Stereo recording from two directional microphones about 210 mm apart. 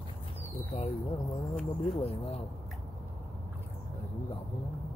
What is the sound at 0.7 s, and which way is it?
Speech, 30° left (ahead or behind).